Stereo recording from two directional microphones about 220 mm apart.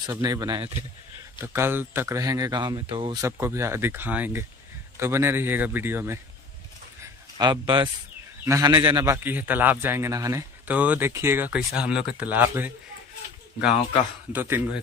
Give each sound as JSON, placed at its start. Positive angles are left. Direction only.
{"t": 0.0, "sound": "a man's voice", "side_deg": -15}
{"t": 7.3, "sound": "a man's voice", "side_deg": -20}
{"t": 14.3, "sound": "a man's voice", "side_deg": -10}